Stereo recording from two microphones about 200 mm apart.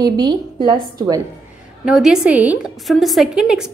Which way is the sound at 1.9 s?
5° right (ahead or behind).